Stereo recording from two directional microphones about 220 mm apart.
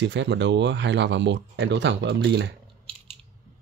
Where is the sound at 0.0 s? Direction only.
55° right (ahead or behind).